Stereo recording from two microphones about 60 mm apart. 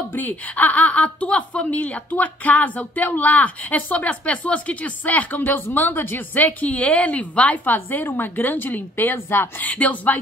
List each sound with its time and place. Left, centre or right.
0.1 s a woman's voice: left